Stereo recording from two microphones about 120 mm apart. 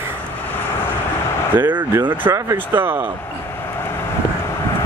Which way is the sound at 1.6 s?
20° right (ahead or behind).